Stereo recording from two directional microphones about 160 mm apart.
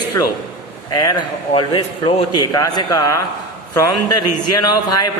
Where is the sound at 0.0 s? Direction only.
25° left (ahead or behind).